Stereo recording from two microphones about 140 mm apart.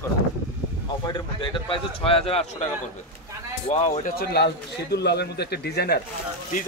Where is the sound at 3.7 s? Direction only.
55° left (ahead or behind).